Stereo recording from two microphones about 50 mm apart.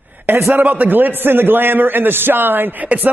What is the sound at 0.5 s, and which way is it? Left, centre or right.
A man's voice, right.